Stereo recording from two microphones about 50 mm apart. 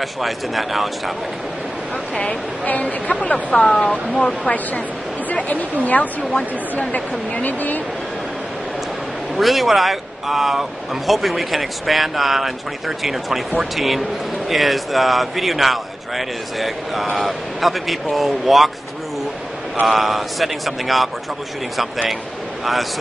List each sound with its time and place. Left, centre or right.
0.0 s a man's voice: centre
2.1 s speech: left
3.7 s speech: centre
5.3 s a woman's voice: left
9.4 s a man's voice: centre
19.9 s a man's voice: centre